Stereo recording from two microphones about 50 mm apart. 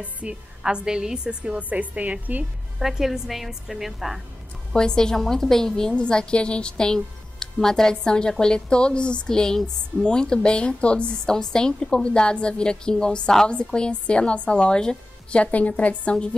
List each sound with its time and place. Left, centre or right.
0.0 s a woman's voice: right
1.6 s a woman's voice: right
2.8 s a woman's voice: centre
4.7 s a woman's voice: centre
5.9 s a woman's voice: centre